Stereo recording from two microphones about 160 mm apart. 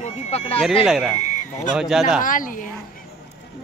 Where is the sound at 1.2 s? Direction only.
50° left (ahead or behind).